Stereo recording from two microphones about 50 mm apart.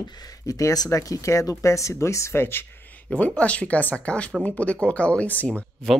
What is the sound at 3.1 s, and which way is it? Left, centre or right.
Speech, left.